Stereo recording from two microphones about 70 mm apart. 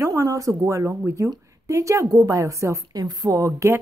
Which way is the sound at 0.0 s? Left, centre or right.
Right.